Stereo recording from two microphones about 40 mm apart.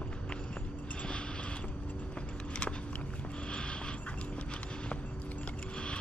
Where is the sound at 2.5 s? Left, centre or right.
Left.